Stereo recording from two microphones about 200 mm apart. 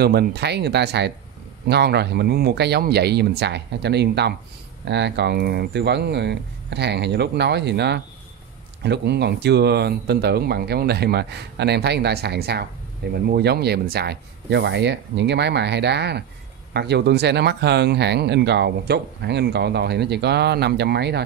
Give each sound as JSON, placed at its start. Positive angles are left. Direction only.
{"t": 0.0, "sound": "speech", "side_deg": -55}